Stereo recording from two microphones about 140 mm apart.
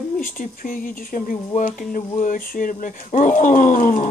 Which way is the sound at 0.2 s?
75° left (ahead or behind).